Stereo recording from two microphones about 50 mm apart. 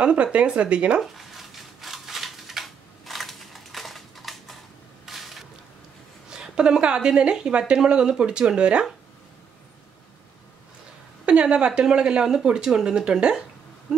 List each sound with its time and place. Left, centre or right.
0.0 s speech: right
1.0 s a sound: centre
6.3 s speech: centre
11.2 s a woman's voice: centre